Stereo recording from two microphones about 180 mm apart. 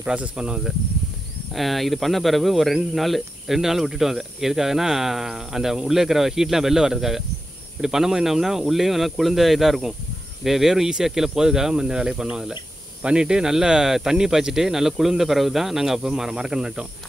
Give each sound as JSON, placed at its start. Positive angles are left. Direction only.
{"t": 0.0, "sound": "speech", "side_deg": -5}